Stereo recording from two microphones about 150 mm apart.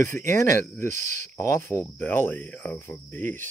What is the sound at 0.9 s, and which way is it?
Speech, 55° right (ahead or behind).